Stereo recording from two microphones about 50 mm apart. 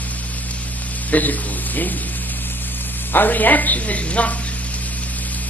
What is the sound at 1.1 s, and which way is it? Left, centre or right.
Speech, left.